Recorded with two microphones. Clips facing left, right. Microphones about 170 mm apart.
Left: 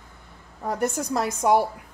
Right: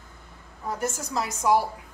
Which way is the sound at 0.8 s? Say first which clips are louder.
Left 5 dB; 60° left (ahead or behind).